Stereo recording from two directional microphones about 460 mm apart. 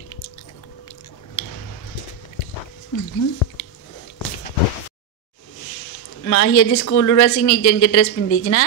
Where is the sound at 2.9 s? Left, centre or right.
Left.